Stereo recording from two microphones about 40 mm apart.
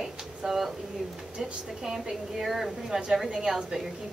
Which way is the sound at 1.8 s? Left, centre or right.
Centre.